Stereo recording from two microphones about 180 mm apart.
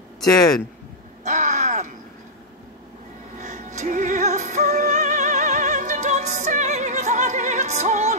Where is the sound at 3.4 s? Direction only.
40° right (ahead or behind).